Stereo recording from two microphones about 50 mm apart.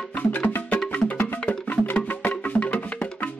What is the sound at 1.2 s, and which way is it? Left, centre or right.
Music, left.